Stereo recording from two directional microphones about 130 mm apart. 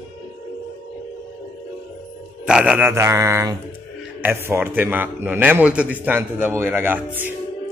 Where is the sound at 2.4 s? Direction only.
10° right (ahead or behind).